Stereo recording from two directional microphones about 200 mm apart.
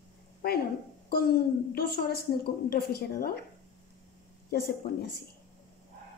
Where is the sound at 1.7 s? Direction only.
50° left (ahead or behind).